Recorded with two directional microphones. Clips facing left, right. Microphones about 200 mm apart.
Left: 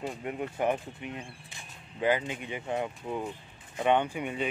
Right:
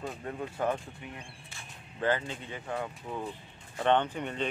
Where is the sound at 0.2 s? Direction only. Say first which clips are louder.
Left 2 dB; 15° left (ahead or behind).